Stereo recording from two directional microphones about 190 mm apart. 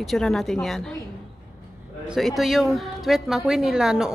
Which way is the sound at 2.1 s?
Centre (ahead or behind).